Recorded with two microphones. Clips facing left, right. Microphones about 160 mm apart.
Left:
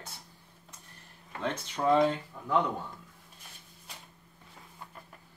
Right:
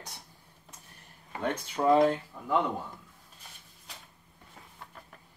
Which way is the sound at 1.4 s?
10° right (ahead or behind).